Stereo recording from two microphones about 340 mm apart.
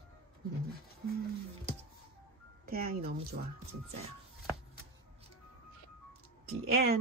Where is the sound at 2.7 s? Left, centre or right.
Right.